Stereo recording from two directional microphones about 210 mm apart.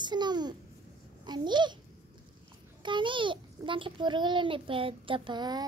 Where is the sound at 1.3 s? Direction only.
20° right (ahead or behind).